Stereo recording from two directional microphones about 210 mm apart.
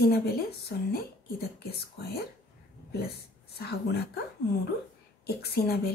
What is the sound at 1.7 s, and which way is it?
Speech, 50° left (ahead or behind).